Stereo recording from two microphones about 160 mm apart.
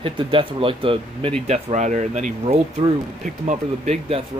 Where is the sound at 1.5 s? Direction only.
45° right (ahead or behind).